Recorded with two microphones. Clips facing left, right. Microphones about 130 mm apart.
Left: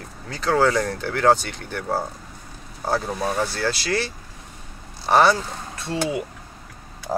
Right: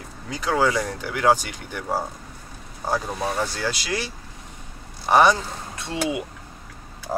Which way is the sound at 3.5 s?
15° right (ahead or behind).